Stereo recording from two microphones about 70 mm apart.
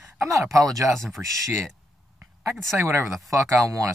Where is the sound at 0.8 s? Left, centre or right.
Centre.